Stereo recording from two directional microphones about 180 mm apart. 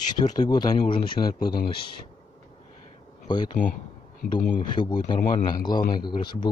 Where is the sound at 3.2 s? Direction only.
25° left (ahead or behind).